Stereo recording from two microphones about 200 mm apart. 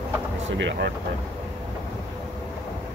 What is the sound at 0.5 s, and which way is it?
Speech, 65° right (ahead or behind).